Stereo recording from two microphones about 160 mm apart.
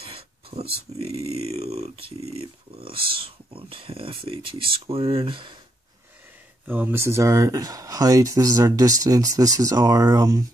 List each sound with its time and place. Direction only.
0.0 s a sound: 35° right (ahead or behind)
0.9 s speech: 40° right (ahead or behind)
6.7 s speech: 15° right (ahead or behind)